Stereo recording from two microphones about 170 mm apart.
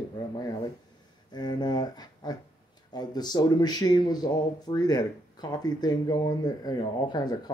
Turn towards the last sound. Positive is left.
turn(degrees=25)  # may be behind; listen again after turning